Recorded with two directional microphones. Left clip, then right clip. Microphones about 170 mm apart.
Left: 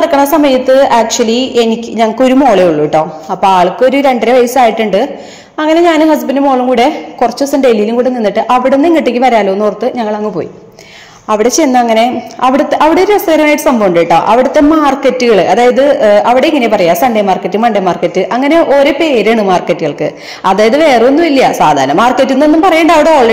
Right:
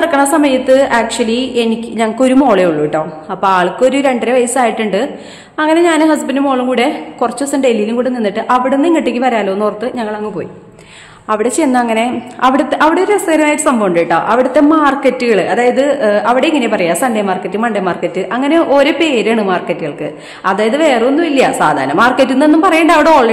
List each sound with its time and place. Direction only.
0.0 s a woman's voice: 10° left (ahead or behind)
11.2 s a woman's voice: 15° left (ahead or behind)
18.6 s a woman's voice: 5° left (ahead or behind)